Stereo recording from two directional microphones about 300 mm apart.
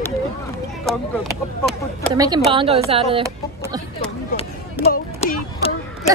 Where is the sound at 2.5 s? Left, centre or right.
Centre.